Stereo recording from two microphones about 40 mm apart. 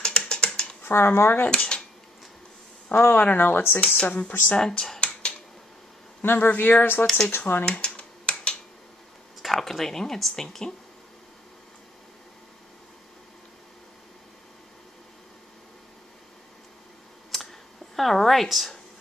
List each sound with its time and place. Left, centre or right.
0.0 s a sound: left
0.8 s speech: left
2.9 s speech: left
3.8 s speech: left
4.3 s speech: left
4.6 s speech: centre
6.2 s speech: left
7.2 s speech: left
7.8 s finger snapping: left
9.4 s speech: centre
17.3 s a sound: centre